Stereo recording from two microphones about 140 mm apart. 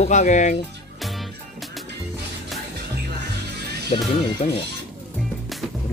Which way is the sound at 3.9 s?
50° left (ahead or behind).